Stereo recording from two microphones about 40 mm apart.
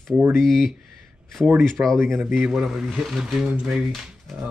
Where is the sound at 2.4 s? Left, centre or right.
Centre.